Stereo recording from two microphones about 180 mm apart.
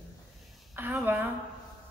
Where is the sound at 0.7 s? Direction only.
10° right (ahead or behind).